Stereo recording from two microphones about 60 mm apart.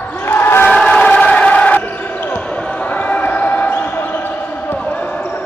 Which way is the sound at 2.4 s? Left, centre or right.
Left.